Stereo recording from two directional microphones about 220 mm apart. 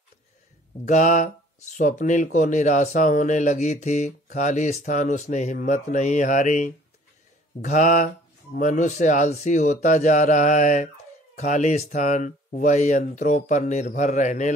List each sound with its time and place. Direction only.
0.8 s speech: 35° left (ahead or behind)